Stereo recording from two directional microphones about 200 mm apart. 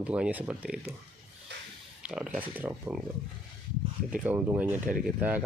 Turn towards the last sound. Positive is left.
turn(degrees=-5)  # may be behind; listen again after turning